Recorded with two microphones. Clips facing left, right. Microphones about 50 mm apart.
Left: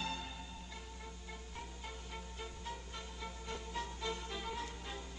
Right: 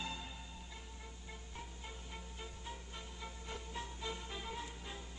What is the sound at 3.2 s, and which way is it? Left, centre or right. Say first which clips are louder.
Music: left 3 dB; centre.